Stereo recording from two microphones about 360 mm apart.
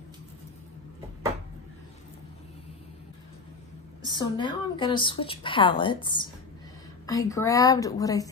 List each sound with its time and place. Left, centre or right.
4.1 s a woman's voice: centre